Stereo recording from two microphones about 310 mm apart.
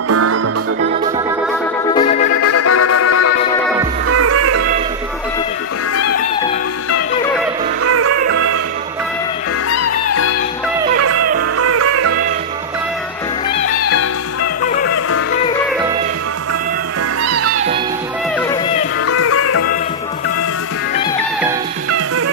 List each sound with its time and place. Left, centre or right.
0.1 s music: right
2.0 s music: centre
2.4 s music: left
4.1 s music: right
7.8 s music: right
9.7 s music: left
11.0 s music: right
13.8 s music: left
17.2 s music: right
19.0 s music: left
21.9 s music: right